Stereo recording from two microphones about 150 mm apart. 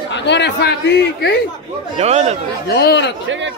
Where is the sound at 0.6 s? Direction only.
90° left.